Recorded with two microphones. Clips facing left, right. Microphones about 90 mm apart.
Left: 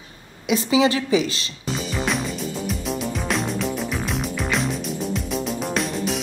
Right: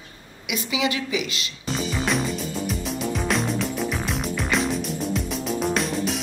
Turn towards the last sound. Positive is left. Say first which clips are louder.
# even
turn(degrees=0)  # may be behind; listen again after turning